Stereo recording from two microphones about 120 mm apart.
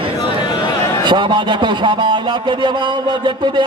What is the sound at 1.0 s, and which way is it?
A man's voice, 40° right (ahead or behind).